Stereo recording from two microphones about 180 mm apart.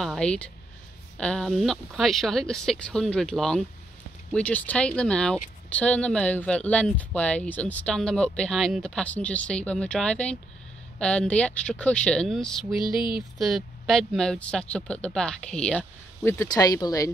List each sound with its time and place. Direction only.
0.0 s speech: 5° left (ahead or behind)
12.8 s a sound: 25° left (ahead or behind)
13.4 s speech: centre (ahead or behind); by 17.1 s 20° left (ahead or behind)